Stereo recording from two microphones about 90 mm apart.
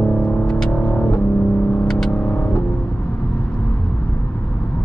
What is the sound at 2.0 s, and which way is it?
Vehicle, 15° left (ahead or behind).